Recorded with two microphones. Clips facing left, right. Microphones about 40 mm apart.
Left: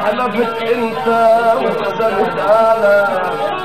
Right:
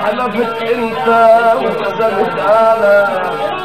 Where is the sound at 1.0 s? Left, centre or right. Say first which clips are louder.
Right 3 dB; right.